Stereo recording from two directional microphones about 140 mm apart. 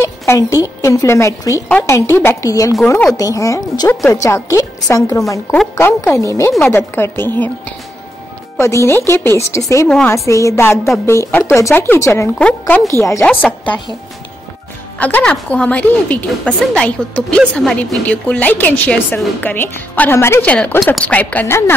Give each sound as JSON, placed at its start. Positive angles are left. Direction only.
{"t": 0.2, "sound": "a woman's voice", "side_deg": 20}
{"t": 8.5, "sound": "a woman's voice", "side_deg": 20}
{"t": 9.8, "sound": "a woman's voice", "side_deg": 5}
{"t": 10.1, "sound": "a woman's voice", "side_deg": 20}
{"t": 12.4, "sound": "a woman's voice", "side_deg": 10}
{"t": 15.0, "sound": "a woman's voice", "side_deg": 10}